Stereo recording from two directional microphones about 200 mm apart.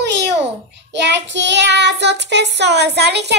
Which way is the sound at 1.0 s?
60° right (ahead or behind).